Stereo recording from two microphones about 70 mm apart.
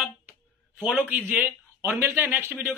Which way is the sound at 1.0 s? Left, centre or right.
Right.